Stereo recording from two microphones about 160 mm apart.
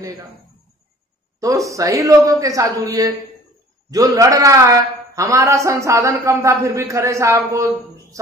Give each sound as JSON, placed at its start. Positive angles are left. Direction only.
{"t": 1.4, "sound": "a man's voice", "side_deg": -20}